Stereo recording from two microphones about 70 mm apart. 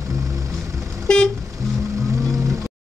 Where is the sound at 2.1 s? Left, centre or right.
Right.